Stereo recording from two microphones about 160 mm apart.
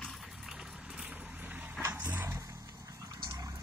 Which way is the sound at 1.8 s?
15° right (ahead or behind).